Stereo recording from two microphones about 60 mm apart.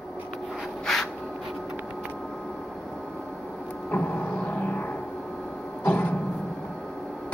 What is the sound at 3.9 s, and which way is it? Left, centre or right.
Music, left.